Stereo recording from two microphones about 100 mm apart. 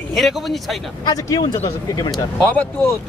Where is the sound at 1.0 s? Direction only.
40° left (ahead or behind).